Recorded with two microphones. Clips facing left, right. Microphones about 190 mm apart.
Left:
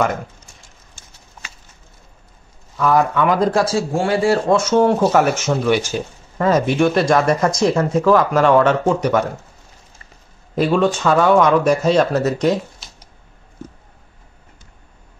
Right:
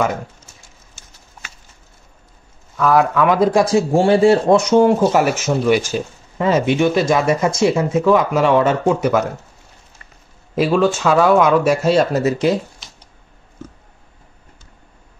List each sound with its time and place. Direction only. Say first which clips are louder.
2.8 s speech: right 1 dB; centre (ahead or behind)
3.5 s speech: right 3 dB; 15° right (ahead or behind)
3.9 s speech: right 6 dB; 25° right (ahead or behind); by 9.3 s 5° right (ahead or behind)
10.5 s speech: right 1 dB; 5° right (ahead or behind)